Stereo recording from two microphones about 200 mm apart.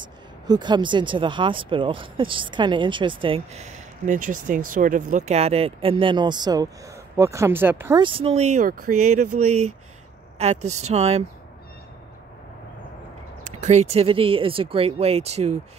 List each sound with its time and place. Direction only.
0.0 s speech: 20° right (ahead or behind)
8.0 s speech: 25° right (ahead or behind)
9.4 s speech: 90° right
10.4 s speech: 35° right (ahead or behind)
13.4 s speech: 35° right (ahead or behind)